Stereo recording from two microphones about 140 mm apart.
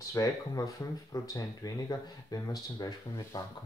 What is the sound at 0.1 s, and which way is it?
Speech, 25° left (ahead or behind).